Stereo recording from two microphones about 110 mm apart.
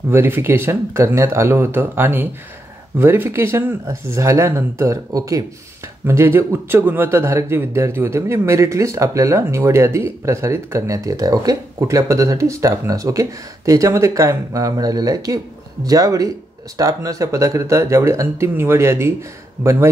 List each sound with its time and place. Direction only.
0.1 s speech: 20° right (ahead or behind)